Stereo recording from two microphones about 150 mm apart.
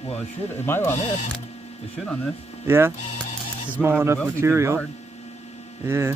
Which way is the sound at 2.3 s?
45° left (ahead or behind).